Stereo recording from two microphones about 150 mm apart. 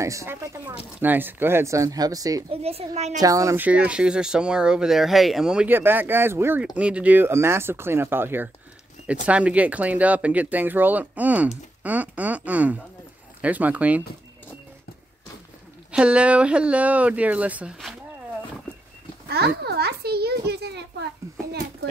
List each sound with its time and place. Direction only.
0.0 s speech: 20° right (ahead or behind)
2.5 s speech: 40° right (ahead or behind)
3.2 s speech: 20° right (ahead or behind)
3.6 s speech: 10° right (ahead or behind)
15.9 s speech: 5° right (ahead or behind)
19.2 s a child's voice: 90° right
21.2 s a child's voice: 20° right (ahead or behind)